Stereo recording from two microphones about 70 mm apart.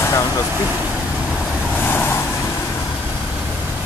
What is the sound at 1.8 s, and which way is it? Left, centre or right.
Vehicle, left.